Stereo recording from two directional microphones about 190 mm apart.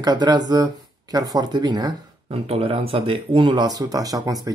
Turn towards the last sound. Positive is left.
turn(degrees=-20)  # may be behind; listen again after turning